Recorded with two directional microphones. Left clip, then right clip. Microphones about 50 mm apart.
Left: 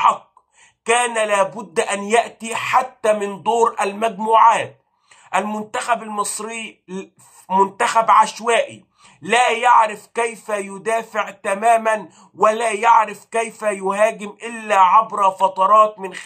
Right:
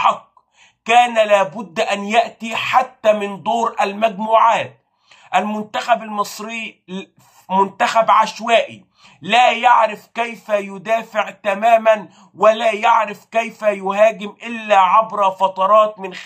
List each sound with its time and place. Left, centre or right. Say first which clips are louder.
0.8 s speech: right 5 dB; left
8.5 s speech: right 2 dB; left